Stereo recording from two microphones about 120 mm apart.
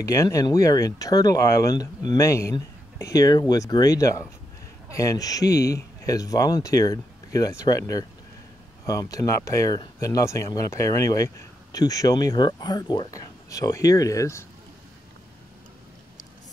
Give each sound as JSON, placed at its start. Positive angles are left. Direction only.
{"t": 0.0, "sound": "speech", "side_deg": 25}
{"t": 8.8, "sound": "speech", "side_deg": 30}